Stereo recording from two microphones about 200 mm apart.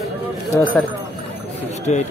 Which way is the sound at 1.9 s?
35° left (ahead or behind).